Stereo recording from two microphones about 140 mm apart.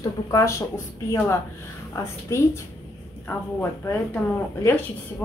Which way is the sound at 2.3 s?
20° left (ahead or behind).